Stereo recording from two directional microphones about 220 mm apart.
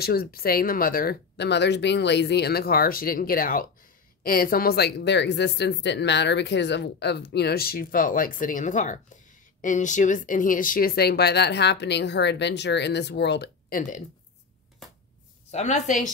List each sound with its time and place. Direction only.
0.0 s speech: 45° left (ahead or behind)
15.5 s a woman's voice: 30° left (ahead or behind)